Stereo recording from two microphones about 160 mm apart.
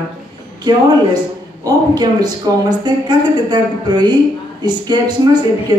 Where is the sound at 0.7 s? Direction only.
25° right (ahead or behind).